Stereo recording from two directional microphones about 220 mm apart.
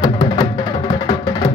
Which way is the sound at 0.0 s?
15° left (ahead or behind).